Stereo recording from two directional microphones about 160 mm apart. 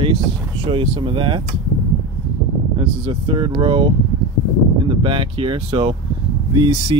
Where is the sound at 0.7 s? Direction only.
30° right (ahead or behind).